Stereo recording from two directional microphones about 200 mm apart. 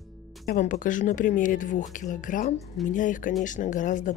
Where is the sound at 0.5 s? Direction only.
40° left (ahead or behind).